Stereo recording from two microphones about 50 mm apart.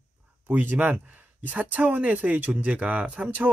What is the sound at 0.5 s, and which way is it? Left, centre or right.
Speech, right.